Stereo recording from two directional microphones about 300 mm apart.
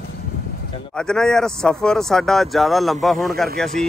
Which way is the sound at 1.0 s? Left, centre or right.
Centre.